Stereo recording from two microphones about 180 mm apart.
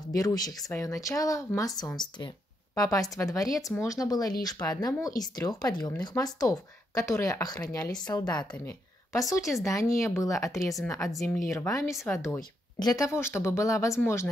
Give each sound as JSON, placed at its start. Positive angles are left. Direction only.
{"t": 0.1, "sound": "a woman's voice", "side_deg": 20}
{"t": 11.1, "sound": "speech", "side_deg": 0}
{"t": 11.5, "sound": "speech", "side_deg": 15}